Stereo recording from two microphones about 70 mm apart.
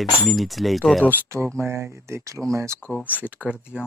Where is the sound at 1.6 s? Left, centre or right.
Right.